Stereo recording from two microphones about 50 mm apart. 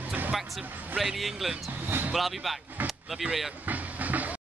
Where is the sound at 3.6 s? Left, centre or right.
Right.